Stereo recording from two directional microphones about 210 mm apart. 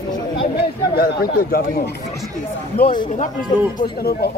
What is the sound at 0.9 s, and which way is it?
A man's voice, 45° left (ahead or behind).